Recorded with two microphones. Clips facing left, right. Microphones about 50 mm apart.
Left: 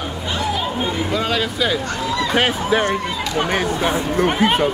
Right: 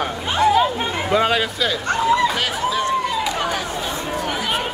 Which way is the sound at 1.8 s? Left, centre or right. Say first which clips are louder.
Right 5 dB; right.